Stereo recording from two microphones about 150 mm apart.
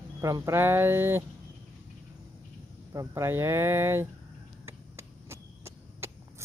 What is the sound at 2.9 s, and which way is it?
Speech, 20° right (ahead or behind).